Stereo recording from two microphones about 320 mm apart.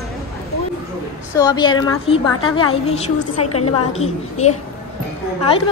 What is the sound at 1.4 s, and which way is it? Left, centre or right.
A woman's voice, centre.